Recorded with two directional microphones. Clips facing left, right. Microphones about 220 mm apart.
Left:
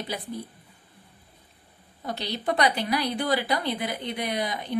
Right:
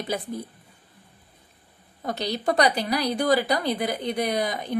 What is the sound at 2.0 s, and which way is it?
Speech, 40° right (ahead or behind).